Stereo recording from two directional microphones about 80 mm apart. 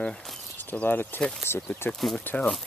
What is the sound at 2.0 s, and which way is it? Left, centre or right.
Speech, centre.